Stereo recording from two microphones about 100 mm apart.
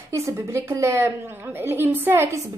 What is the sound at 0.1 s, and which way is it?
Speech, 30° right (ahead or behind).